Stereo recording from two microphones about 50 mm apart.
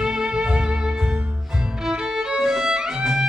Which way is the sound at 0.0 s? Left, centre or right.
Centre.